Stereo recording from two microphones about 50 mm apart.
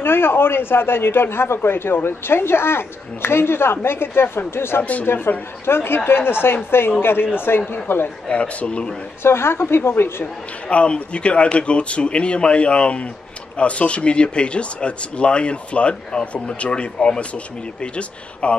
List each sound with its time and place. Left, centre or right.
0.0 s speech: left
8.3 s speech: left
9.2 s speech: left
10.2 s speech: left